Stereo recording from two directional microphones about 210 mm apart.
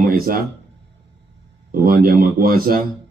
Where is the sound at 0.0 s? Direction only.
45° right (ahead or behind).